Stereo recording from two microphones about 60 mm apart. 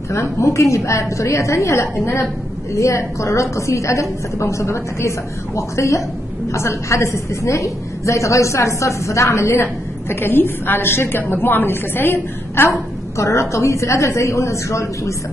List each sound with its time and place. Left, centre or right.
0.1 s a woman's voice: left
13.2 s a woman's voice: left